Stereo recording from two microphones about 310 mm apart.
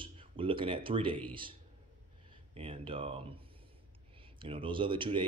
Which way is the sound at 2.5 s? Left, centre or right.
Centre.